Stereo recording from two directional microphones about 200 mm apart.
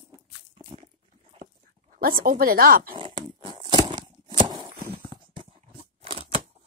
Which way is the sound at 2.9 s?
25° right (ahead or behind).